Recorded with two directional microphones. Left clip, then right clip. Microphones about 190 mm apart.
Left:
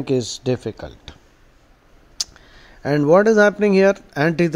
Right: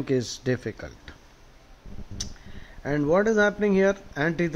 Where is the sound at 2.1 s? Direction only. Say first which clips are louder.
Left 10 dB; 30° left (ahead or behind).